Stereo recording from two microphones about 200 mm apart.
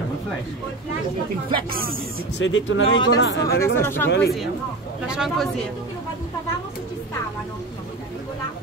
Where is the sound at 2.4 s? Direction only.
75° left (ahead or behind).